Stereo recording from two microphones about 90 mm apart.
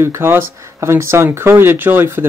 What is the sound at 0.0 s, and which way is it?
Speech, 25° right (ahead or behind).